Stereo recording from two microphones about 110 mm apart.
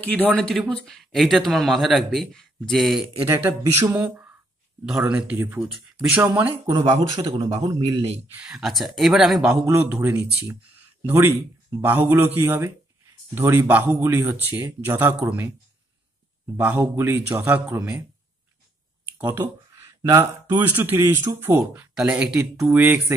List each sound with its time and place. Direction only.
0.0 s speech: 15° left (ahead or behind)
3.3 s speech: 20° right (ahead or behind)
4.8 s speech: 5° right (ahead or behind)
6.6 s speech: 40° right (ahead or behind)
7.2 s speech: 70° right (ahead or behind)
8.3 s a man's voice: 10° right (ahead or behind)
16.5 s a man's voice: 15° right (ahead or behind)
19.1 s a sound: 20° right (ahead or behind)
20.0 s speech: 30° right (ahead or behind)
20.5 s a man's voice: 20° right (ahead or behind)
21.9 s a man's voice: 10° right (ahead or behind)